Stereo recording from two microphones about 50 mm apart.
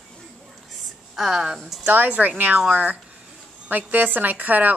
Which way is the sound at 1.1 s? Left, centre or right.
Centre.